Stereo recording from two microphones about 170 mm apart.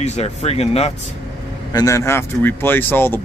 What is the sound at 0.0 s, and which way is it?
Speech, 40° left (ahead or behind).